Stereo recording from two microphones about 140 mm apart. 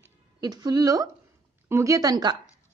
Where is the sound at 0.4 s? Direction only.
30° right (ahead or behind).